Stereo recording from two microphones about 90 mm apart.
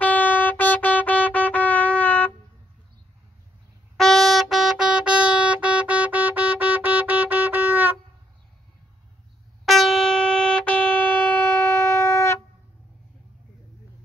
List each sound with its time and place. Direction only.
0.0 s music: 20° left (ahead or behind)
3.9 s music: centre (ahead or behind); by 7.9 s 20° right (ahead or behind)
9.7 s music: centre (ahead or behind); by 12.4 s 30° left (ahead or behind)